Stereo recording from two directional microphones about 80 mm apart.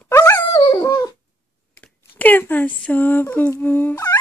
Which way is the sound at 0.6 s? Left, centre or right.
Left.